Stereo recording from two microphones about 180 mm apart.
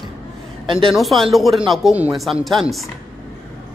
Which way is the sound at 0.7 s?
30° right (ahead or behind).